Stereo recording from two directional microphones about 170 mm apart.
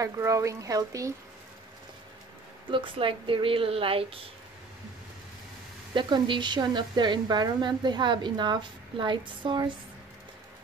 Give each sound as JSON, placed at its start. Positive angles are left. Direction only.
{"t": 0.0, "sound": "a woman's voice", "side_deg": -15}
{"t": 2.7, "sound": "a woman's voice", "side_deg": -30}
{"t": 5.9, "sound": "a woman's voice", "side_deg": -25}